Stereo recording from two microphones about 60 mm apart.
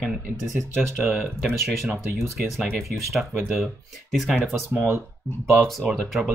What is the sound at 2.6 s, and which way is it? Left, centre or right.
Speech, centre.